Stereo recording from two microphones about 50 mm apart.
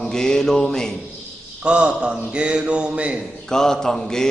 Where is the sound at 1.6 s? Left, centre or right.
Centre.